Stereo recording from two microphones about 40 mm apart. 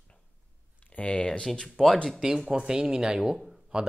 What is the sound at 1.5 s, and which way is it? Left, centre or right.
Speech, centre.